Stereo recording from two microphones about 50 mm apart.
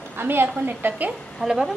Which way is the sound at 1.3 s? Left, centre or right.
Centre.